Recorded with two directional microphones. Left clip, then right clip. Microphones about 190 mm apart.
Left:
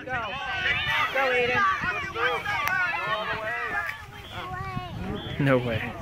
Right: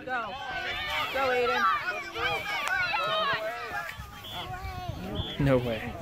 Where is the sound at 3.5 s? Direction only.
40° right (ahead or behind).